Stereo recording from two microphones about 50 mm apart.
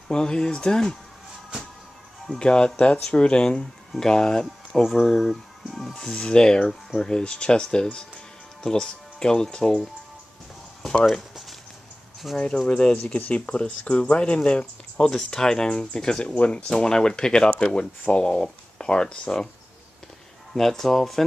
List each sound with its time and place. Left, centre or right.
0.1 s speech: centre
2.2 s speech: centre
5.0 s a sound: centre
6.0 s speech: centre
10.8 s a sound: centre
12.4 s speech: centre
15.0 s speech: centre
16.3 s speech: left
16.6 s speech: centre
20.5 s speech: centre